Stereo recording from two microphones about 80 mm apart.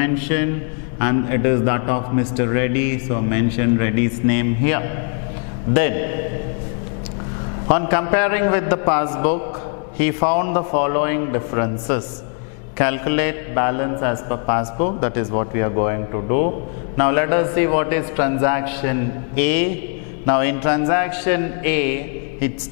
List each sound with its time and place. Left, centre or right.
0.0 s mantra: centre
7.7 s mantra: centre